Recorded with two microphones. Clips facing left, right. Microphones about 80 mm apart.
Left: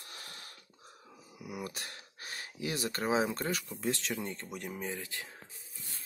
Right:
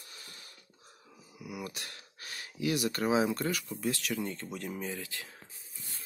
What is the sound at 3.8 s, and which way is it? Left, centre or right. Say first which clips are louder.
Speech: right 2 dB; left.